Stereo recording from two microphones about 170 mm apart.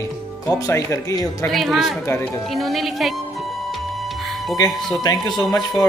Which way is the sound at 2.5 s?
Centre (ahead or behind).